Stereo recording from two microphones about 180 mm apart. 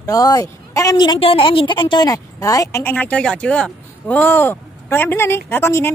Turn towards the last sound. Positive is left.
turn(degrees=15)  # may be behind; listen again after turning